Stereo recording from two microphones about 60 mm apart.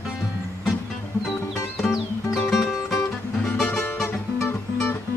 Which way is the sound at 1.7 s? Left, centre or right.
Centre.